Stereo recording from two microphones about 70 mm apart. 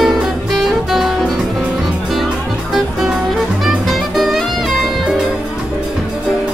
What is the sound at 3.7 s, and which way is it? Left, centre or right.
Music, centre.